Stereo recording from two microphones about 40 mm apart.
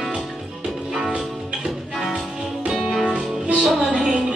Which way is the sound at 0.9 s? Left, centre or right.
Centre.